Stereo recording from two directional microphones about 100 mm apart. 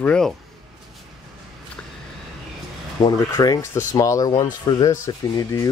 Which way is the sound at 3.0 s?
40° left (ahead or behind).